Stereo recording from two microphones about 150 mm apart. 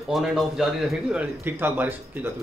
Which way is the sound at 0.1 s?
Centre (ahead or behind).